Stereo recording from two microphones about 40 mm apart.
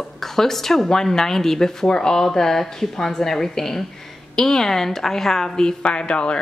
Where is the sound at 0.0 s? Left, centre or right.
Centre.